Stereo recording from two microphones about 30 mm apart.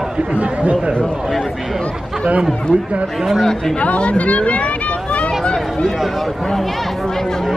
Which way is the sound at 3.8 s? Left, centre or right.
Left.